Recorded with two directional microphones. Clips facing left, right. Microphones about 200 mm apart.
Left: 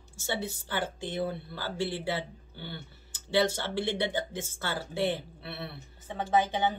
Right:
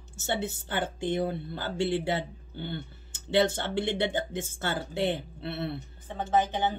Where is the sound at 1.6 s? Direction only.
20° right (ahead or behind).